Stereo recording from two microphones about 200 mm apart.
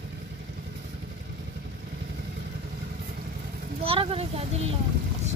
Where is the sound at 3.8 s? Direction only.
30° right (ahead or behind).